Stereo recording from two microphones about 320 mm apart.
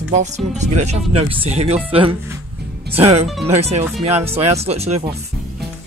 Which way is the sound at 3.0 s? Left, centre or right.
Centre.